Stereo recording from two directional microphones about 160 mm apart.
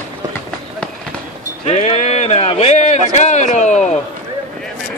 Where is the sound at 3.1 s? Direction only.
45° left (ahead or behind).